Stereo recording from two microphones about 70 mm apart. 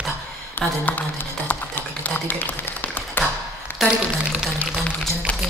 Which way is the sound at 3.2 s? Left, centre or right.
Left.